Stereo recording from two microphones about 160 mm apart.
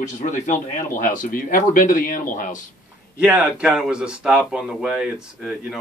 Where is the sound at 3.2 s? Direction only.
5° right (ahead or behind).